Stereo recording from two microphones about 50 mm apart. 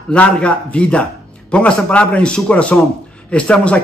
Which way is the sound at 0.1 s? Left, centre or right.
Left.